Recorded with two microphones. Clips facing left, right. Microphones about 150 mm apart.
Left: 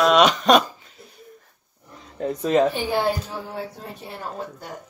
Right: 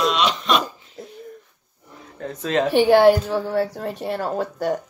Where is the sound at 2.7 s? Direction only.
75° right (ahead or behind).